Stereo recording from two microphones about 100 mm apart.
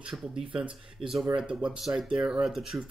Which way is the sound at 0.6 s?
5° right (ahead or behind).